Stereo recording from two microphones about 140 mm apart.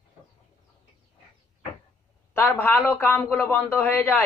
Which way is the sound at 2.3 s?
15° left (ahead or behind).